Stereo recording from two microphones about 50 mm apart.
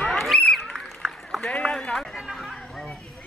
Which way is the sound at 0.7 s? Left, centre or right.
Centre.